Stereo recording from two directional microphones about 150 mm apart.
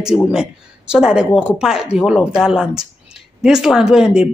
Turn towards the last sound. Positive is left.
turn(degrees=-5)  # may be behind; listen again after turning